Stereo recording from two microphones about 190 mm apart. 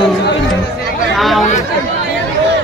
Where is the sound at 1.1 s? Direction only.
Centre (ahead or behind).